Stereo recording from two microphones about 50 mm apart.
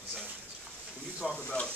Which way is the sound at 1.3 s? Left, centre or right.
Left.